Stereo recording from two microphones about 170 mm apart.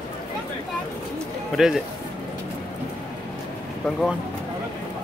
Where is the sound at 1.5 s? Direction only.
Centre (ahead or behind).